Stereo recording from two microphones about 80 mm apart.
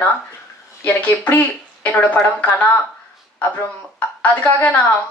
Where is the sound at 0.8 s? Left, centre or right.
Left.